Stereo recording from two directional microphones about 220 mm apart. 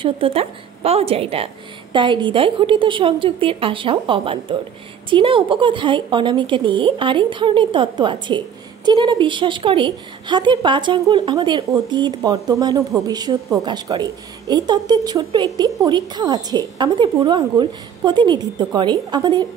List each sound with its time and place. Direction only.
0.0 s a woman's voice: 25° right (ahead or behind)